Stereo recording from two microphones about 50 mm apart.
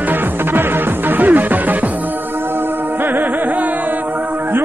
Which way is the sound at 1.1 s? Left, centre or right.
Right.